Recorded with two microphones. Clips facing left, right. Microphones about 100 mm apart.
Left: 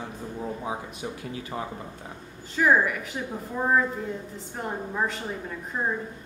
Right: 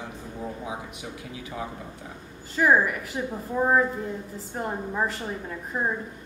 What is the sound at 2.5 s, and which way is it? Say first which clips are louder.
Speech: right 1 dB; centre (ahead or behind).